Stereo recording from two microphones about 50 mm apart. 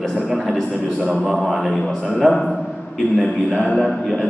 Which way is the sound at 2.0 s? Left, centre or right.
Centre.